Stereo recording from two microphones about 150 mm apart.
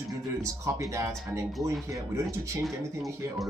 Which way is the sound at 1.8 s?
20° right (ahead or behind).